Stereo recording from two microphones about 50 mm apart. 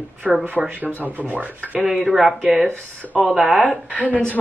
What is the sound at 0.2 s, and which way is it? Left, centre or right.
Speech, centre.